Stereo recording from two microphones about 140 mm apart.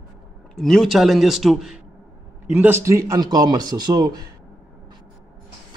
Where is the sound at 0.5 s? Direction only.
5° left (ahead or behind).